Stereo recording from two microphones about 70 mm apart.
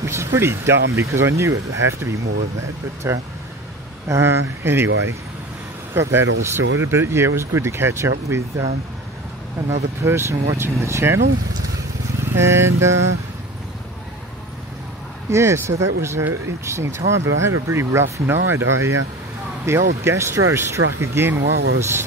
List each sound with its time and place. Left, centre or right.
0.0 s speech: right
5.9 s speech: right
9.7 s speech: right
12.2 s vehicle: right
15.2 s speech: right